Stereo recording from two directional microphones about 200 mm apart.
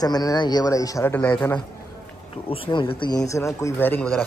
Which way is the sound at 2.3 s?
25° left (ahead or behind).